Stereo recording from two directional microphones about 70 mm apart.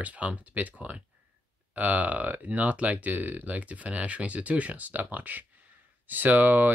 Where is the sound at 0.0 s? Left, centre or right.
Right.